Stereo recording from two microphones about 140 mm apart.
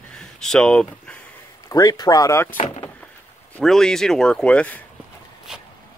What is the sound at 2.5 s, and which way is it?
Speech, 50° left (ahead or behind).